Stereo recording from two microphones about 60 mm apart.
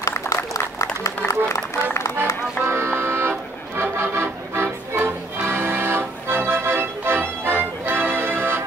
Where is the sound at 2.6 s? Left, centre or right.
Right.